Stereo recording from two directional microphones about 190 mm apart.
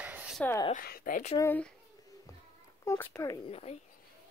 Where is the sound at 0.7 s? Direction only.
50° left (ahead or behind).